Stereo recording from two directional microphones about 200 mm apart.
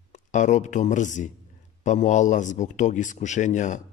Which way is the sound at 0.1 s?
35° left (ahead or behind).